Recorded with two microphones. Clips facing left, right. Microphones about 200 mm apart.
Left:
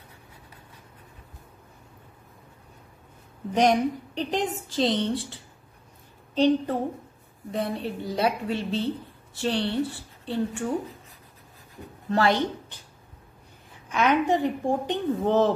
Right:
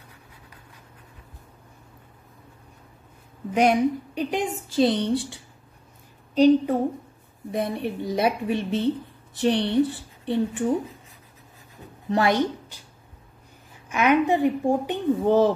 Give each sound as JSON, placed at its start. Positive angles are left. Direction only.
{"t": 3.5, "sound": "speech", "side_deg": -10}
{"t": 12.1, "sound": "speech", "side_deg": -15}
{"t": 13.8, "sound": "speech", "side_deg": -10}